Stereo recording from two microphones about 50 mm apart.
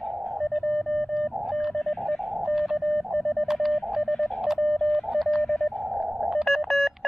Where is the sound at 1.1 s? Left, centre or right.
Centre.